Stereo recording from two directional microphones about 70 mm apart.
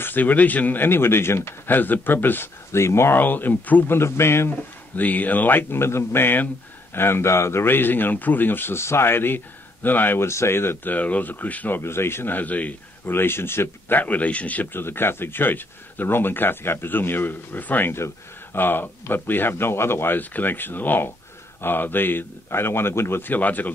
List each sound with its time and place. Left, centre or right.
0.0 s a man's voice: left
13.1 s a man's voice: left